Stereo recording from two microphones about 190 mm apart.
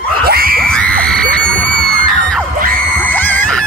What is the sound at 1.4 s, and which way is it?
Screaming, 45° right (ahead or behind).